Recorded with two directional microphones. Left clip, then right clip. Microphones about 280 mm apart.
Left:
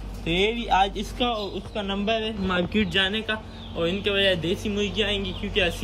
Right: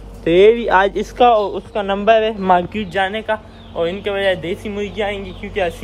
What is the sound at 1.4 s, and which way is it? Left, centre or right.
Speech, right.